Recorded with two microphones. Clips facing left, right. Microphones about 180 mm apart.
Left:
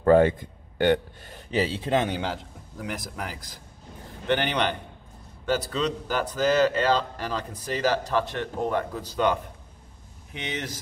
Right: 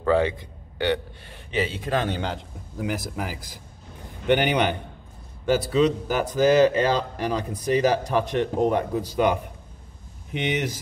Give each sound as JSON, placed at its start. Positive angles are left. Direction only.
{"t": 0.0, "sound": "a man's voice", "side_deg": 50}
{"t": 2.0, "sound": "a man's voice", "side_deg": 5}